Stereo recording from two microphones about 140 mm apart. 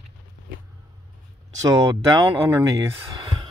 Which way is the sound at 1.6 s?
25° right (ahead or behind).